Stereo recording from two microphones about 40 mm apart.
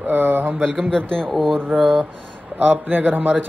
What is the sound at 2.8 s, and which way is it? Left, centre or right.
Speech, right.